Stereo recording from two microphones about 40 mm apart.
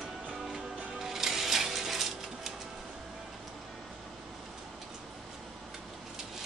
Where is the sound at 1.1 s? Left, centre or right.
Centre.